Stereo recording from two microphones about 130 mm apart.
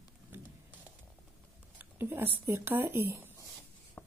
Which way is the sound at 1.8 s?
15° right (ahead or behind).